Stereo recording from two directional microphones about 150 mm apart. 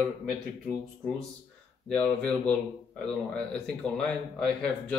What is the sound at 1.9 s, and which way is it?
Speech, 10° left (ahead or behind).